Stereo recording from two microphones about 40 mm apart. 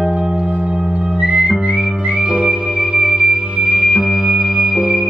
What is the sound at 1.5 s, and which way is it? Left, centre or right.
Music, right.